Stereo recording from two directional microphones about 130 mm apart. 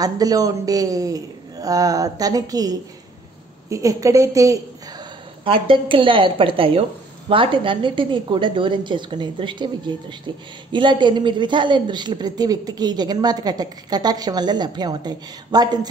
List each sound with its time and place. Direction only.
0.0 s speech: 30° right (ahead or behind)
5.4 s a woman's voice: 40° right (ahead or behind)